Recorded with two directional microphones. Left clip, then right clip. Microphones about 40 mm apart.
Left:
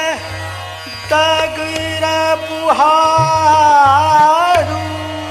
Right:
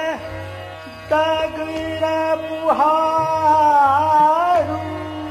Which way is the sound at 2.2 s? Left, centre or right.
Right.